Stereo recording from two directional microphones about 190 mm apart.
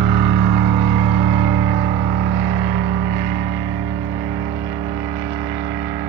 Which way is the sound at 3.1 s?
20° right (ahead or behind).